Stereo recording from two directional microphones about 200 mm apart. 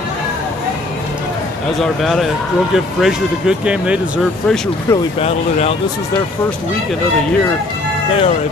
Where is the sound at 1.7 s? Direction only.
Centre (ahead or behind).